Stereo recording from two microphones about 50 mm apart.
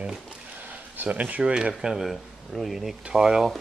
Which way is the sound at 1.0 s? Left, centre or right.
Right.